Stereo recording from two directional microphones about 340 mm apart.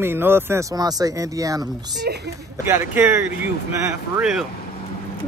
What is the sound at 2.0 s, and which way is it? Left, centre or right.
Speech, right.